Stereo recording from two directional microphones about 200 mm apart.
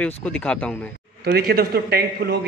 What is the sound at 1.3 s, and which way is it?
A man's voice, 50° right (ahead or behind).